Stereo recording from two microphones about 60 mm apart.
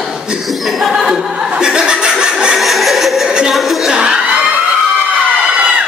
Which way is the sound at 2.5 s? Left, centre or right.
Centre.